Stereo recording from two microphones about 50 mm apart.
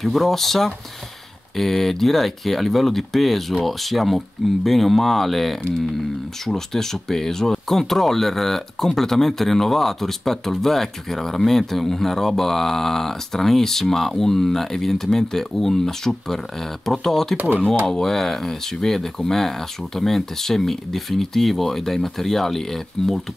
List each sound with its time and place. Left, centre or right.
0.0 s speech: centre
17.4 s speech: right
17.9 s speech: centre